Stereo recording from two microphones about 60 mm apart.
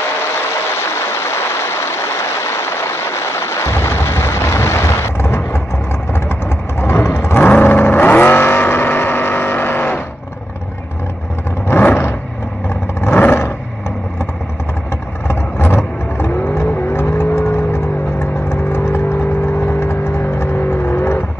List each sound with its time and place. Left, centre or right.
0.7 s a sound: left
2.4 s music: left
6.8 s vehicle: left
7.3 s vehicle: left
12.6 s vehicle: left
13.2 s roar: left
15.2 s vehicle: left